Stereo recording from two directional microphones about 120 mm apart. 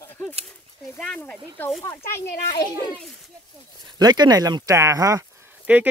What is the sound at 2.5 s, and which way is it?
Speech, 35° left (ahead or behind).